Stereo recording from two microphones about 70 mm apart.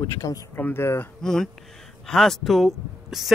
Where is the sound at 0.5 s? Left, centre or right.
Left.